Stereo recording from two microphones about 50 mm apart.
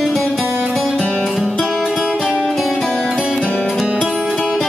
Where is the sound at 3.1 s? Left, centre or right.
Centre.